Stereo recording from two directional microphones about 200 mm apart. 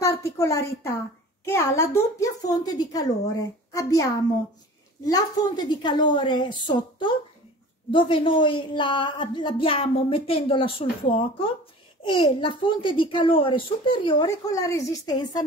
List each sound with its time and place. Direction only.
0.0 s a woman's voice: 15° left (ahead or behind)
5.7 s a woman's voice: 20° left (ahead or behind)